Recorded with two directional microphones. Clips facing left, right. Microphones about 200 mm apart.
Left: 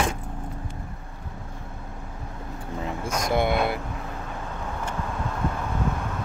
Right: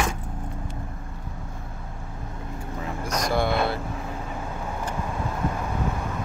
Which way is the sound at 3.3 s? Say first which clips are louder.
Left 1 dB; 20° left (ahead or behind).